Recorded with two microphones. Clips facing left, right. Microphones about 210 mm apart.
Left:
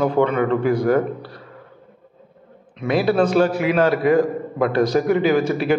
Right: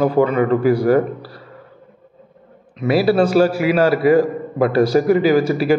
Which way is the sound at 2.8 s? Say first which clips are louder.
Right 3 dB; 5° right (ahead or behind).